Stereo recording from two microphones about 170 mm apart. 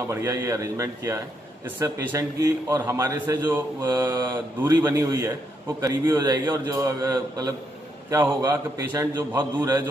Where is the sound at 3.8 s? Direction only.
20° right (ahead or behind).